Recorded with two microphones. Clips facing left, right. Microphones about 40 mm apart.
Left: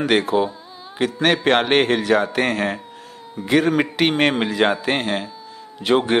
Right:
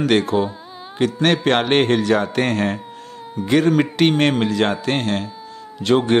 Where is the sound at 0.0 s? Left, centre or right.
Centre.